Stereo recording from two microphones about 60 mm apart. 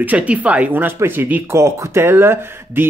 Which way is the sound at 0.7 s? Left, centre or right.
Right.